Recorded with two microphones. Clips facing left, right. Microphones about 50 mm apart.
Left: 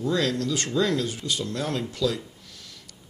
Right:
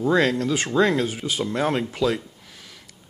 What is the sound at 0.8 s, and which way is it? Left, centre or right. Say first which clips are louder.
Speech: right 5 dB; right.